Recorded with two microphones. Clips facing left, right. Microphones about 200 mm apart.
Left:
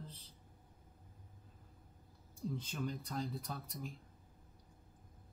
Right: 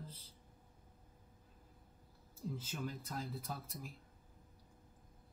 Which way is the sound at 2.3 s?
5° right (ahead or behind).